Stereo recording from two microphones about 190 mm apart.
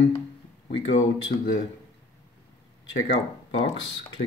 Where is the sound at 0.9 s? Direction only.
80° left.